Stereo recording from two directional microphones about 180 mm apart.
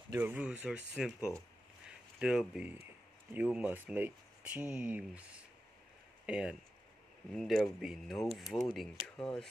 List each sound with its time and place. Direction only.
0.1 s speech: 10° right (ahead or behind)
6.2 s speech: 5° right (ahead or behind)